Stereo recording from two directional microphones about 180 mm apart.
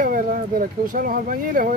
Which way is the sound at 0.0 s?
50° right (ahead or behind).